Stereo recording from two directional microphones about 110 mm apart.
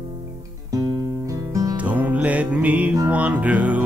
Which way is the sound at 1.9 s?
15° right (ahead or behind).